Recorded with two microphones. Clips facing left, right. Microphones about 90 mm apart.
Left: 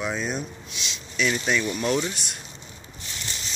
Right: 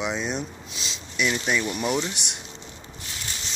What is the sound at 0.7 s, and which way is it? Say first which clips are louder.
Speech: even; 30° right (ahead or behind).